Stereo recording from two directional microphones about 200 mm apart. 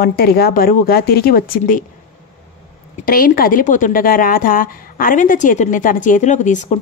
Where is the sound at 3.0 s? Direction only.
45° left (ahead or behind).